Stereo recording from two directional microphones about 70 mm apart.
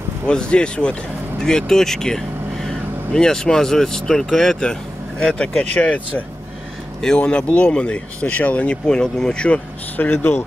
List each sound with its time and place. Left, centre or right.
0.3 s speech: centre